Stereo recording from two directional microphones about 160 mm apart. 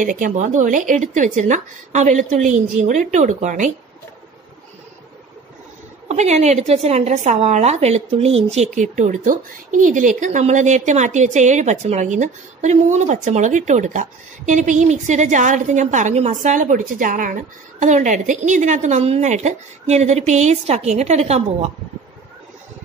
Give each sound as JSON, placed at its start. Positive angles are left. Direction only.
{"t": 0.0, "sound": "speech", "side_deg": -55}
{"t": 6.0, "sound": "speech", "side_deg": -45}
{"t": 8.6, "sound": "speech", "side_deg": -50}